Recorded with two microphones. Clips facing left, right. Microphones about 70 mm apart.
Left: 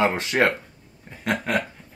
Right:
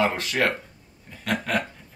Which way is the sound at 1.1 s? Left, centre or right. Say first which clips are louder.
Left 2 dB; left.